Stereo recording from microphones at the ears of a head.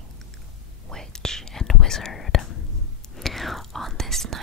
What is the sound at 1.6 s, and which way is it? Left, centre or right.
Whispering, left.